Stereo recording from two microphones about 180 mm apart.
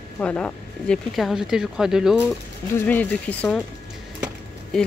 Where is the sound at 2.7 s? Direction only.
10° left (ahead or behind).